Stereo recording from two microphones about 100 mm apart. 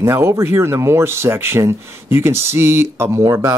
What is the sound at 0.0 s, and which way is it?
Speech, 25° right (ahead or behind).